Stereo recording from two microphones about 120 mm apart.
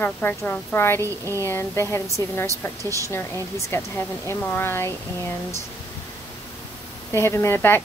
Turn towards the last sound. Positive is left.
turn(degrees=20)  # may be behind; listen again after turning